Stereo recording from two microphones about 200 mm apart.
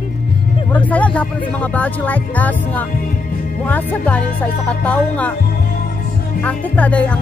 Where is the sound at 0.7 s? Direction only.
5° left (ahead or behind).